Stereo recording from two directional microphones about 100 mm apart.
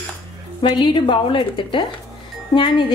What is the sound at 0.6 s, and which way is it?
A woman's voice, 55° left (ahead or behind).